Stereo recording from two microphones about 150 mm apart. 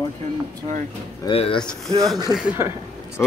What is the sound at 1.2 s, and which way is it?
Speech, 40° left (ahead or behind).